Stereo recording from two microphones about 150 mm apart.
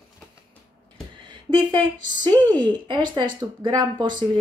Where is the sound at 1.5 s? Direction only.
30° right (ahead or behind).